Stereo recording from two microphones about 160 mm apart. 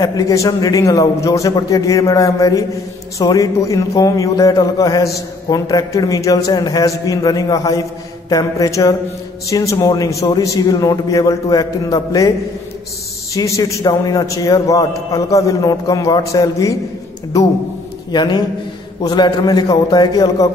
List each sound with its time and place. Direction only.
0.0 s speech: 20° left (ahead or behind)
13.3 s speech: 20° left (ahead or behind)
18.1 s speech: 25° left (ahead or behind)